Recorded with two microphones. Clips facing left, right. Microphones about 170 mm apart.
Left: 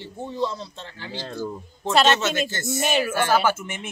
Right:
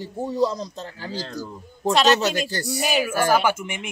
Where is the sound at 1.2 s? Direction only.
20° left (ahead or behind).